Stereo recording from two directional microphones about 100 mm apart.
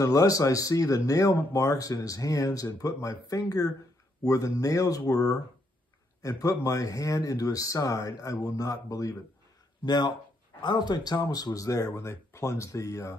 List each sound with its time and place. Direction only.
0.0 s speech: 35° left (ahead or behind)
9.8 s speech: 45° left (ahead or behind)